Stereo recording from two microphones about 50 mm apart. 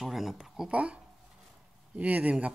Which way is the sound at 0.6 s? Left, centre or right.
Right.